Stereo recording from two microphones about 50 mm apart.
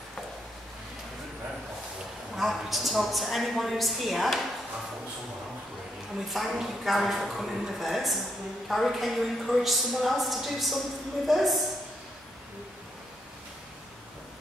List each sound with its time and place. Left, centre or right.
2.3 s a woman's voice: centre
6.2 s a woman's voice: centre